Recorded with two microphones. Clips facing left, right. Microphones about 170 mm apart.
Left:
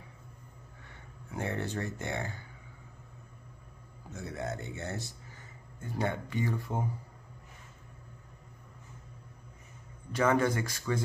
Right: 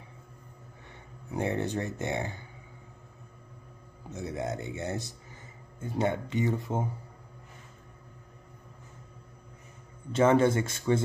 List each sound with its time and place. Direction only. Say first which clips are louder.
1.3 s speech: right 5 dB; 20° right (ahead or behind)
4.1 s a man's voice: right 4 dB; 20° right (ahead or behind)
10.1 s speech: right 5 dB; 25° right (ahead or behind)